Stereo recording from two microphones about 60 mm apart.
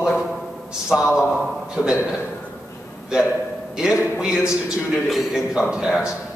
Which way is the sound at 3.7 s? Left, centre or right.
Centre.